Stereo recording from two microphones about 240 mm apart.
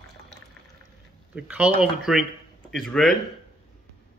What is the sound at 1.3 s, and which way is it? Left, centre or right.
Speech, centre.